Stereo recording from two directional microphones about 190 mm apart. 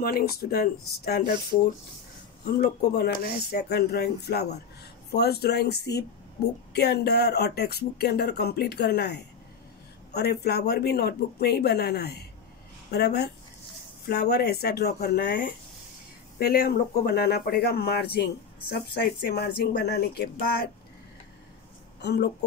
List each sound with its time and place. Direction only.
0.0 s speech: 55° left (ahead or behind)
22.0 s speech: 60° left (ahead or behind)